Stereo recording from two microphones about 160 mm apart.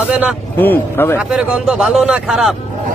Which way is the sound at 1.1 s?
5° right (ahead or behind).